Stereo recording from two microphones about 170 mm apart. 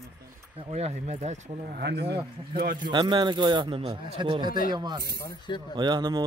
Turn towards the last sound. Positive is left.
turn(degrees=-25)  # may be behind; listen again after turning